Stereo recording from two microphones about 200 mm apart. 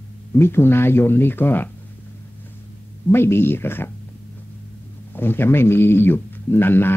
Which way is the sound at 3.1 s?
10° left (ahead or behind).